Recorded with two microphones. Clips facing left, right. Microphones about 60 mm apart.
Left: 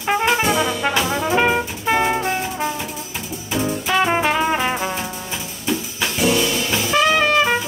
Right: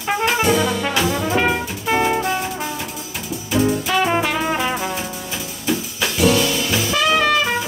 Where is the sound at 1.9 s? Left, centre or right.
Centre.